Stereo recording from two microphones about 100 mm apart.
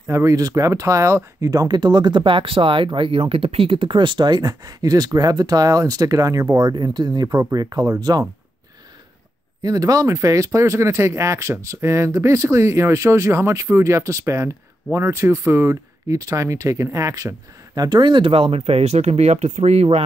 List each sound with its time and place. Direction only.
0.1 s speech: 30° right (ahead or behind)
9.6 s speech: 35° right (ahead or behind); by 20.0 s 90° right